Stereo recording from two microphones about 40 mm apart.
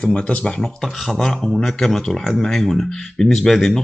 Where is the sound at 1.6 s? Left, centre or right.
Centre.